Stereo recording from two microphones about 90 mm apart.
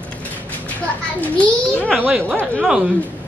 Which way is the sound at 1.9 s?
20° right (ahead or behind).